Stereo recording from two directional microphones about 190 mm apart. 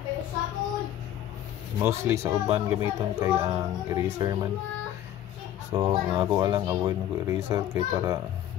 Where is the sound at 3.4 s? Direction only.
20° right (ahead or behind).